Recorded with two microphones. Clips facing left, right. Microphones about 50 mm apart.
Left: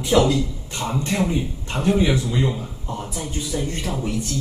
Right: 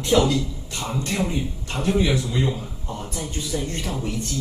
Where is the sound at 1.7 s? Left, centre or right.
Left.